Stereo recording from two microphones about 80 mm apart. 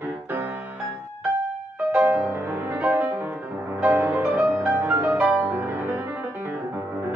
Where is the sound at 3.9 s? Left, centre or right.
Right.